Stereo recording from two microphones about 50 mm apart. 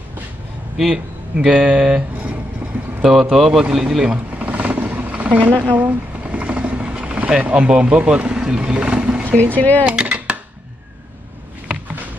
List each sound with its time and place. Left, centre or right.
0.9 s speech: centre
3.0 s speech: centre
4.3 s vehicle: right
5.1 s a sound: right
6.4 s speech: right
9.6 s speech: left
9.8 s a sound: right